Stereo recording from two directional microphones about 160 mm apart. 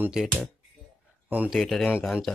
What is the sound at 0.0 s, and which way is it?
Speech, 5° right (ahead or behind).